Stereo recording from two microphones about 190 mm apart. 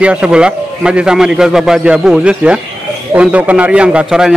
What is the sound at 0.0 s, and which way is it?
A man's voice, 5° right (ahead or behind).